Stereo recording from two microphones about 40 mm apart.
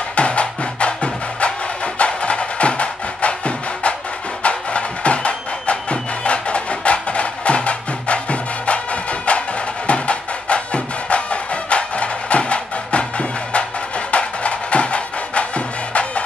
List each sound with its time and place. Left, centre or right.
0.1 s music: left